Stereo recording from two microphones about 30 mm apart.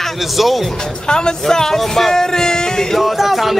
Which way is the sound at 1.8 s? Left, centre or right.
Centre.